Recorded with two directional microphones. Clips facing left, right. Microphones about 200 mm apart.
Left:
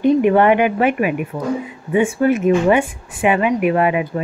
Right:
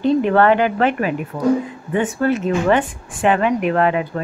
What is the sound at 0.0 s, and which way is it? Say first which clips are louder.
Speech: left 2 dB; 15° left (ahead or behind).